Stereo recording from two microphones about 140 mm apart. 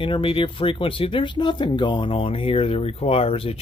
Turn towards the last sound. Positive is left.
turn(degrees=45)  # may be behind; listen again after turning